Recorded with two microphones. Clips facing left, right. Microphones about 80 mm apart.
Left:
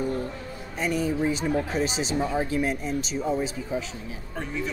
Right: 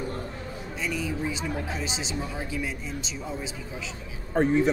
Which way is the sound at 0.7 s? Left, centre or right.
Left.